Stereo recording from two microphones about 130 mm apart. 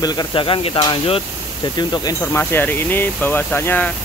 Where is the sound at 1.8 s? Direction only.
30° left (ahead or behind).